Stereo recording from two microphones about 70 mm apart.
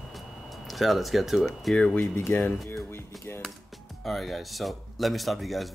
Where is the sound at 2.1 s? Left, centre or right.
Left.